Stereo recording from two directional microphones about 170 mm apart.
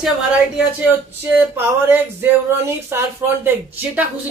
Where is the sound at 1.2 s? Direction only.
10° right (ahead or behind).